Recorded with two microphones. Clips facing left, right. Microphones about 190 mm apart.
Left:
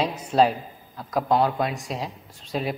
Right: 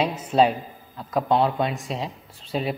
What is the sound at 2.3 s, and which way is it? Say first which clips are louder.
Speech: even; 30° right (ahead or behind).